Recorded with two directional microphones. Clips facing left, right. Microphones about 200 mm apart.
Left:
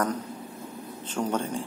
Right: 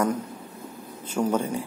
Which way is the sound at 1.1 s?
10° right (ahead or behind).